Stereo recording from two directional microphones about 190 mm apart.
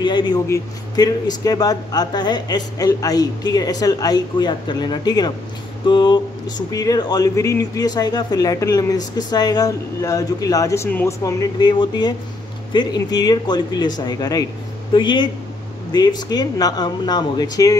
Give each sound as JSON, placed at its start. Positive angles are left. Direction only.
{"t": 0.0, "sound": "speech", "side_deg": 25}